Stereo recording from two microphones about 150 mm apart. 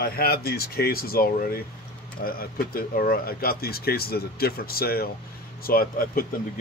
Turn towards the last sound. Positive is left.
turn(degrees=75)  # may be behind; listen again after turning